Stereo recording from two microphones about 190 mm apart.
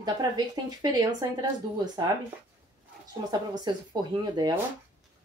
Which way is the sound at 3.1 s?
20° right (ahead or behind).